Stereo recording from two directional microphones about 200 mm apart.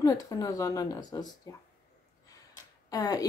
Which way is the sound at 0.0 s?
15° left (ahead or behind).